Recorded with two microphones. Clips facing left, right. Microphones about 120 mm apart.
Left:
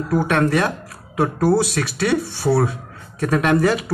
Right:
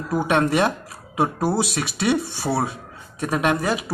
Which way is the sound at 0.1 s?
15° right (ahead or behind).